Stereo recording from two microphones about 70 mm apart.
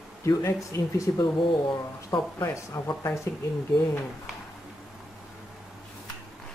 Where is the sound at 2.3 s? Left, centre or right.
Left.